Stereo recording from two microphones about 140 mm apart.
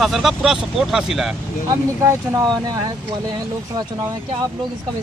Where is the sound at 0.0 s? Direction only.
Centre (ahead or behind).